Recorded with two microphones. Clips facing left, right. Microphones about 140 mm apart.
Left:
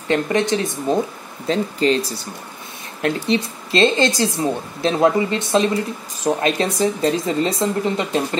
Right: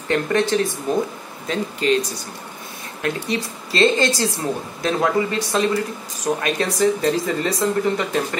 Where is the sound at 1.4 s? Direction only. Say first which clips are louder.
Left 3 dB; 30° left (ahead or behind).